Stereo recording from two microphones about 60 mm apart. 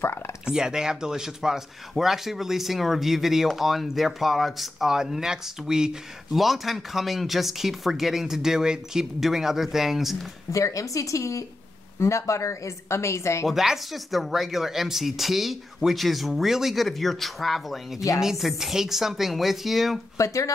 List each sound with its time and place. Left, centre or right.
0.5 s speech: centre
10.5 s a woman's voice: left
13.5 s speech: centre
20.2 s speech: left